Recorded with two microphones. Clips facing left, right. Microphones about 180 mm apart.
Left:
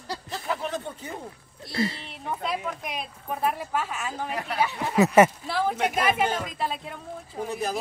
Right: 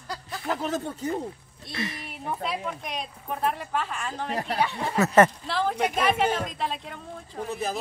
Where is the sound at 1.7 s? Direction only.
30° left (ahead or behind).